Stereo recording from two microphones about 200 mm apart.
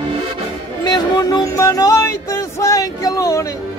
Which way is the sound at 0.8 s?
20° left (ahead or behind).